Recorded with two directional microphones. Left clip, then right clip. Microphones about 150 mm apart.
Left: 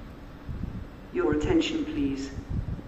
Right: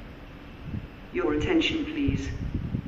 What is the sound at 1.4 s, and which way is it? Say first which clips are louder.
Speech: right 1 dB; 5° right (ahead or behind).